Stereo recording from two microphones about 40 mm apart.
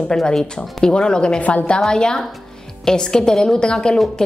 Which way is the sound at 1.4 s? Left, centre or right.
Left.